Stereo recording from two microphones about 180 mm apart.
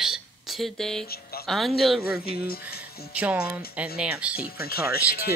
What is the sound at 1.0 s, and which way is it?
Speech, 60° left (ahead or behind).